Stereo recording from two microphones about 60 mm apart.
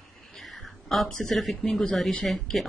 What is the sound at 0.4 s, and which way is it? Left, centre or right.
Speech, centre.